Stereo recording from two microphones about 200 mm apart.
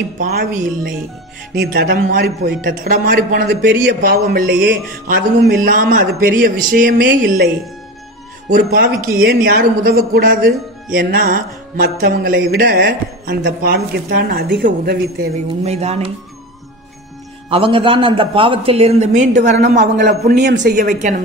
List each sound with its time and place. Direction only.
0.2 s a man's voice: 40° right (ahead or behind)
8.7 s a man's voice: 45° right (ahead or behind)
15.3 s speech: 35° right (ahead or behind)
17.5 s a man's voice: 25° right (ahead or behind)